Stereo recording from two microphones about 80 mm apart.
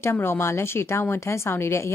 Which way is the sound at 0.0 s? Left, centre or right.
Left.